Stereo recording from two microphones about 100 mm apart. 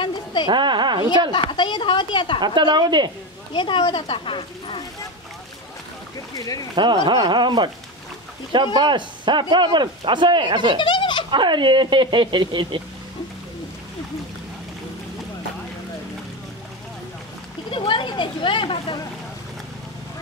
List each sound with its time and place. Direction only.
0.0 s a sound: 50° left (ahead or behind)
0.5 s speech: 50° right (ahead or behind)
1.3 s speech: 50° left (ahead or behind)
2.4 s speech: 50° right (ahead or behind)
3.5 s speech: 55° left (ahead or behind)
6.3 s speech: 35° left (ahead or behind)
6.7 s speech: 45° right (ahead or behind)
8.7 s speech: 50° right (ahead or behind)
10.8 s a sound: 55° left (ahead or behind)
11.2 s speech: 50° right (ahead or behind)
17.6 s speech: 60° left (ahead or behind)